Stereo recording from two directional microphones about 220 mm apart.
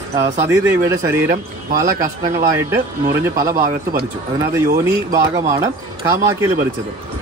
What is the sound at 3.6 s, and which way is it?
Speech, 40° right (ahead or behind).